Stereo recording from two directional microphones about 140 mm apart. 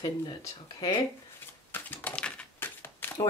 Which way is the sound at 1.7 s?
15° left (ahead or behind).